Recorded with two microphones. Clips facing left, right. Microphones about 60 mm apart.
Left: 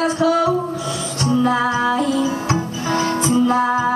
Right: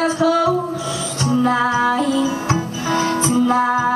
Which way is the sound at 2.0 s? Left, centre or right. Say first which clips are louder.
Right 1 dB; right.